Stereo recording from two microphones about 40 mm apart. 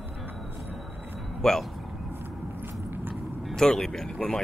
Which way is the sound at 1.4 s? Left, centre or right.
Centre.